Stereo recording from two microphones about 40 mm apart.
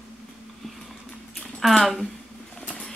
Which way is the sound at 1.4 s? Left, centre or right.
Centre.